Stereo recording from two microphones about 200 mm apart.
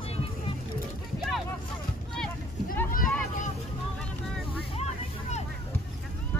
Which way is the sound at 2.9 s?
45° left (ahead or behind).